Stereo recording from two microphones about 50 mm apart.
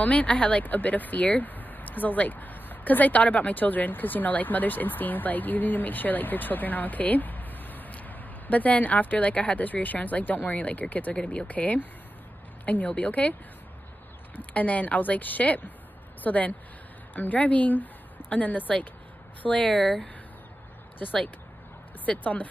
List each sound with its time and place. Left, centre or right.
0.0 s speech: left
14.3 s speech: left
19.6 s speech: centre
22.0 s speech: left